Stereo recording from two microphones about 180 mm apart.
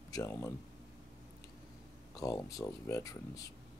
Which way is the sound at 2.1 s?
20° left (ahead or behind).